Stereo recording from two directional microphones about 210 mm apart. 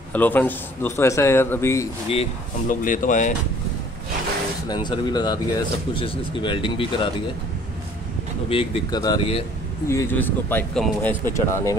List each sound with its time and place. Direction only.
0.1 s speech: 10° left (ahead or behind)
2.7 s speech: 40° left (ahead or behind)
4.6 s speech: 20° left (ahead or behind)
8.5 s speech: 25° left (ahead or behind)